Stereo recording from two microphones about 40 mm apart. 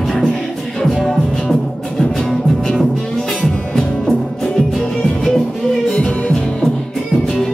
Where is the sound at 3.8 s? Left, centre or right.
Centre.